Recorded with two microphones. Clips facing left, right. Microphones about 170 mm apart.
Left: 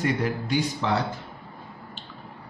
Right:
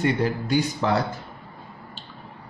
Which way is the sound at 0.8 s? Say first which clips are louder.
Right 3 dB; 45° right (ahead or behind).